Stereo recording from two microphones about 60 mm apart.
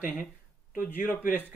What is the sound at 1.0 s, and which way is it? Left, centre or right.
Speech, left.